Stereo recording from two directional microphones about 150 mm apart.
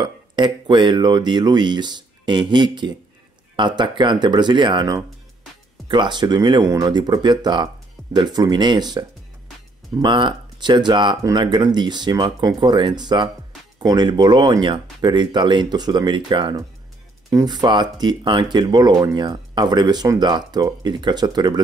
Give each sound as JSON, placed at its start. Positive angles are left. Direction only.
{"t": 0.0, "sound": "speech", "side_deg": -30}
{"t": 10.0, "sound": "speech", "side_deg": -30}